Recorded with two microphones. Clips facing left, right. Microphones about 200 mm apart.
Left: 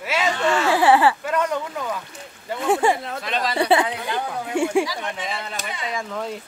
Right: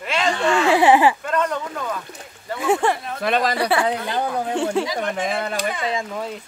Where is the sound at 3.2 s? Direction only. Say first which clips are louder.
Right 6 dB; 50° right (ahead or behind).